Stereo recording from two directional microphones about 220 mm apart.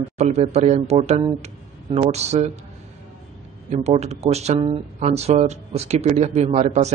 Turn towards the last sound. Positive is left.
turn(degrees=-30)  # may be behind; listen again after turning